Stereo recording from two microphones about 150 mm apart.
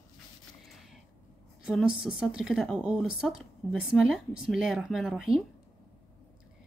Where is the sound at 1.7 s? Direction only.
5° right (ahead or behind).